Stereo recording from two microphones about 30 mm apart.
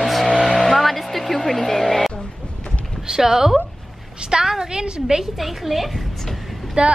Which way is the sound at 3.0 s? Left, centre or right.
Centre.